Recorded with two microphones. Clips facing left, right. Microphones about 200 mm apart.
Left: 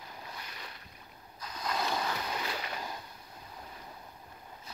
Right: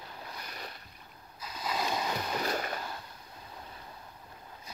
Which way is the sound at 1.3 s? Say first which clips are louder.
Even; 5° right (ahead or behind).